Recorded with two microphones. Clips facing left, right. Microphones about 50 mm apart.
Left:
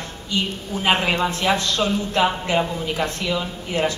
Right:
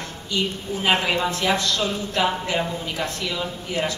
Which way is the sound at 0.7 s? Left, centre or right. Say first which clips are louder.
Even; right.